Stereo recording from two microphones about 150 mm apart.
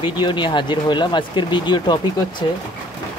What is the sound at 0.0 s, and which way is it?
Speech, 30° left (ahead or behind).